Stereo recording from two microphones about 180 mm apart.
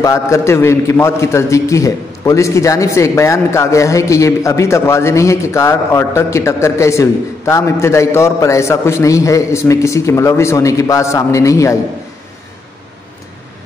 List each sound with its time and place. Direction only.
0.0 s a man's voice: 15° left (ahead or behind)